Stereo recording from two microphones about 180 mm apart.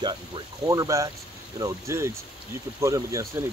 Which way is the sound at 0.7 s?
20° right (ahead or behind).